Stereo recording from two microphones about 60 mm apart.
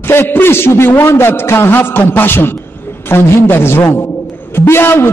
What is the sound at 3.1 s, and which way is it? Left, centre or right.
A man's voice, left.